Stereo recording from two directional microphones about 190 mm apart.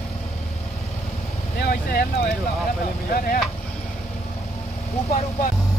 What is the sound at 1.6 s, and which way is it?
Speech, 55° left (ahead or behind).